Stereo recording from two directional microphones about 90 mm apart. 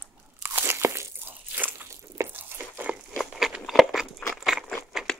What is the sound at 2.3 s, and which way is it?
Tearing, 20° right (ahead or behind).